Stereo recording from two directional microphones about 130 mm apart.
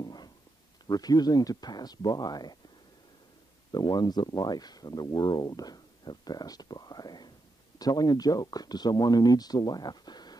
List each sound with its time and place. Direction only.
0.0 s a sound: 35° left (ahead or behind)
0.8 s speech: 30° left (ahead or behind)
3.7 s speech: 30° left (ahead or behind)